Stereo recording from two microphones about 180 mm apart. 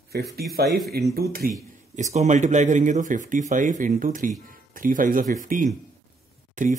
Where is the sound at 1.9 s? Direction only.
40° right (ahead or behind).